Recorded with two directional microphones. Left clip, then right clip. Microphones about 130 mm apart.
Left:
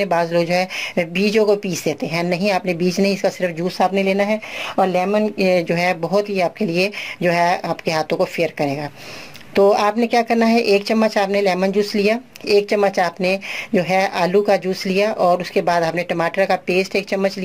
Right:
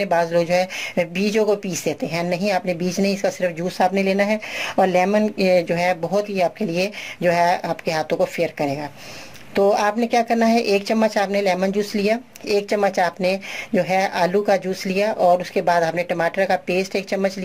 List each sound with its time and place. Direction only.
0.0 s speech: 15° left (ahead or behind); by 5.3 s 10° right (ahead or behind)
5.4 s speech: 10° left (ahead or behind)